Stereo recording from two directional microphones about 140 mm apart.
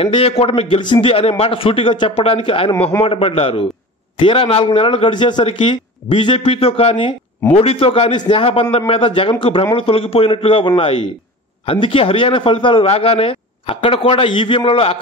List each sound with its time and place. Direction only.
0.0 s a man's voice: 45° left (ahead or behind)